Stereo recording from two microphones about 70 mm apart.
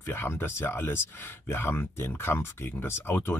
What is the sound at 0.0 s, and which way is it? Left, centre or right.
Speech, left.